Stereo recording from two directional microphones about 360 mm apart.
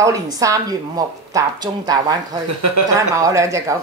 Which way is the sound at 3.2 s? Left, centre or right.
Centre.